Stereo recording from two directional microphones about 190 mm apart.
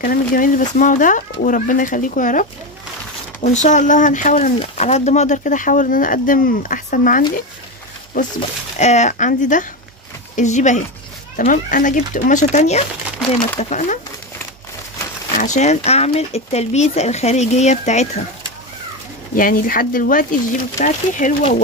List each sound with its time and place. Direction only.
0.0 s speech: 50° left (ahead or behind)
3.4 s speech: 40° left (ahead or behind)
15.3 s speech: 40° left (ahead or behind)
19.3 s speech: 45° left (ahead or behind)